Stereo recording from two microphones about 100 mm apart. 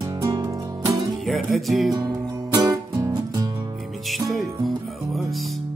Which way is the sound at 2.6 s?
40° right (ahead or behind).